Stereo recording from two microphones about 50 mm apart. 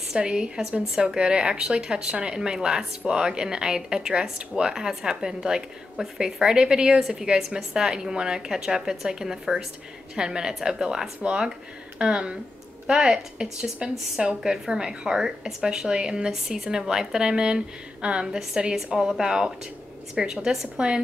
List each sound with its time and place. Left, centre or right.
0.1 s a woman's voice: centre
7.0 s a woman's voice: centre